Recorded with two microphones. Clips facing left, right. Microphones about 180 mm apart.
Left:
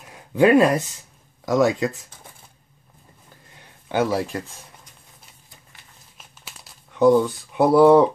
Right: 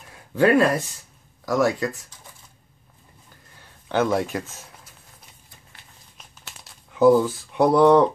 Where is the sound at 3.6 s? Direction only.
10° left (ahead or behind).